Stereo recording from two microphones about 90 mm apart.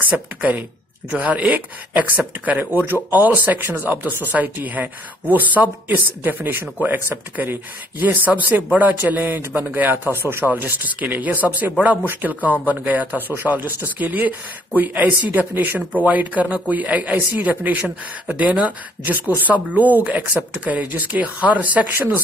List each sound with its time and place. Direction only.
0.4 s a man's voice: 15° right (ahead or behind)